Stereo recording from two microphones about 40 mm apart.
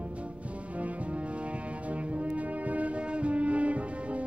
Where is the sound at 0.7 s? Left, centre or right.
Right.